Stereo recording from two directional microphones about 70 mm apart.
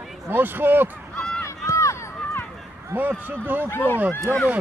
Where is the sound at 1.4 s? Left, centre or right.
Left.